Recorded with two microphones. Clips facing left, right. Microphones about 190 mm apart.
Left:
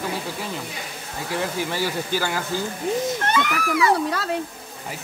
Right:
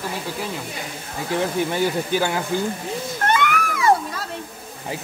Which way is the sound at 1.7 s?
20° right (ahead or behind).